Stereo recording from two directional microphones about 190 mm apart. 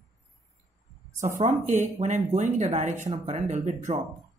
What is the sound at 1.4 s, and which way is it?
Speech, 40° right (ahead or behind).